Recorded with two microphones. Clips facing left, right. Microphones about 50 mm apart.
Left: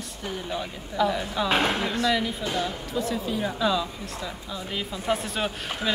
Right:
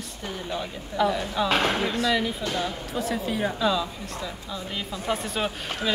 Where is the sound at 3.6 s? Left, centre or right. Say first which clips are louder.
Even; centre.